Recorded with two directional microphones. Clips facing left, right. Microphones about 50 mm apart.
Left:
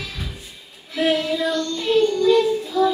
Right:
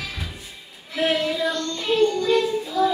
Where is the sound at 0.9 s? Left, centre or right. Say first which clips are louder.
Left 2 dB; centre.